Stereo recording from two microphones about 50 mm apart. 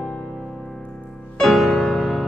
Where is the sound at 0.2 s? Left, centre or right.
Centre.